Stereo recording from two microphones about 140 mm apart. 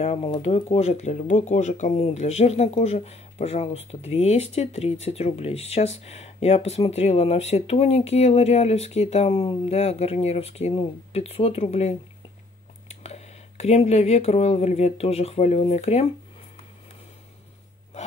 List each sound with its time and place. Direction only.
0.0 s speech: 45° left (ahead or behind)